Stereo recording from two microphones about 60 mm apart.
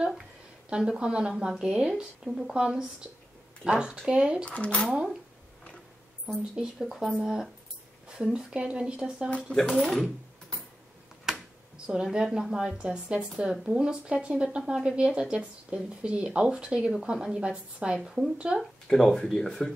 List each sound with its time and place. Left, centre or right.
0.7 s speech: centre
4.5 s speech: left
6.2 s speech: centre
9.3 s speech: centre
9.7 s speech: centre
11.3 s a sound: centre
11.8 s speech: centre
14.6 s speech: centre
18.9 s speech: centre